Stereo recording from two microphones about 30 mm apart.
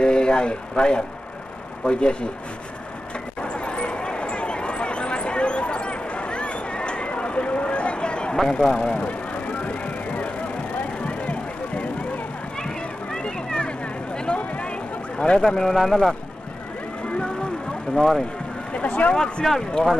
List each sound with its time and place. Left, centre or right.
0.0 s a man's voice: left
3.3 s a sound: left
8.6 s speech: left
9.0 s a sound: left
11.1 s music: left
12.5 s a sound: left
15.4 s a man's voice: centre
17.9 s speech: centre
18.7 s speech: left
19.4 s a man's voice: centre